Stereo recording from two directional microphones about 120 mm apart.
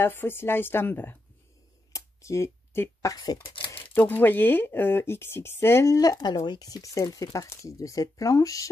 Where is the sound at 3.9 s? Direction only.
15° left (ahead or behind).